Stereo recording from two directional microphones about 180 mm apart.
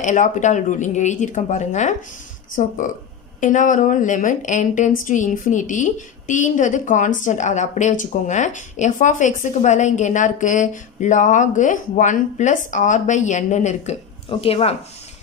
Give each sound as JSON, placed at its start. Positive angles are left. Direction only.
{"t": 0.0, "sound": "a woman's voice", "side_deg": 45}